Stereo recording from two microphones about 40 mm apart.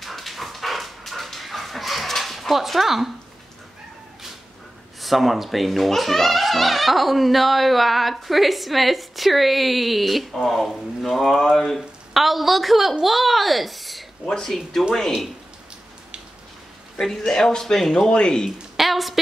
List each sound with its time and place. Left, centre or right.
0.0 s dog: centre
5.0 s a child's voice: centre
14.2 s speech: centre
17.0 s speech: centre
18.8 s a sound: centre